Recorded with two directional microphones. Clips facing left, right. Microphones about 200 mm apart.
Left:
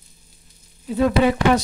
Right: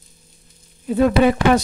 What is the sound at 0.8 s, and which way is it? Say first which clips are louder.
Speech: right 3 dB; 55° right (ahead or behind).